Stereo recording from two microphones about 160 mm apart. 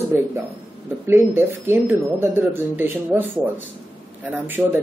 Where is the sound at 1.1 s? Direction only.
15° right (ahead or behind).